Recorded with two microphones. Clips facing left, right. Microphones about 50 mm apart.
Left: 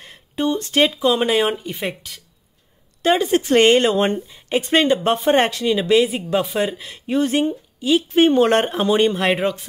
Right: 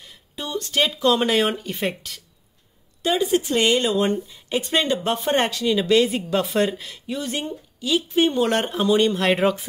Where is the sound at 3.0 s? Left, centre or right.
Left; by 6.8 s centre.